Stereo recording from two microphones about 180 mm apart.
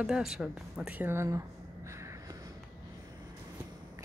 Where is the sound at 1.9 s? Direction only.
15° right (ahead or behind).